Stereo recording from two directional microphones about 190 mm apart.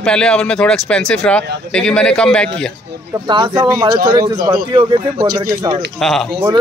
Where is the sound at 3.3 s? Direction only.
25° right (ahead or behind).